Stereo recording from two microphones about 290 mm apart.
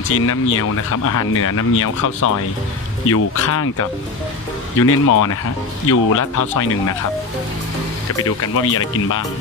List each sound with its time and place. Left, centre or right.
0.1 s speech: left
4.8 s speech: left
8.4 s speech: left